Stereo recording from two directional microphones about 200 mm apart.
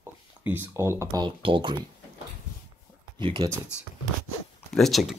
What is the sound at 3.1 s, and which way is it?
Speech, 25° right (ahead or behind).